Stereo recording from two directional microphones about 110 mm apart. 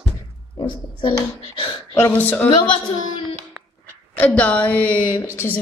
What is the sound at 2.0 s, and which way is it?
Speech, 15° left (ahead or behind).